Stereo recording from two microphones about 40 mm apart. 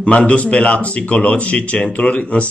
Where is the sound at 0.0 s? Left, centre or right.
Left.